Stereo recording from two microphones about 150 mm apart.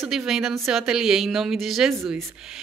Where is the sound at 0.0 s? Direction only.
Centre (ahead or behind).